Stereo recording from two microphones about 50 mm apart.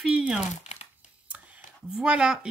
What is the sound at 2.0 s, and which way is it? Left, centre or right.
Speech, centre.